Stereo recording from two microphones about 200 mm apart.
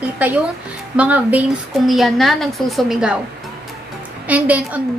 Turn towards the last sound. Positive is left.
turn(degrees=-5)  # may be behind; listen again after turning